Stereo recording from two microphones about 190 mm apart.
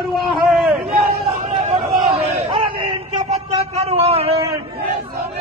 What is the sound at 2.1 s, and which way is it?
Crowd, 30° right (ahead or behind).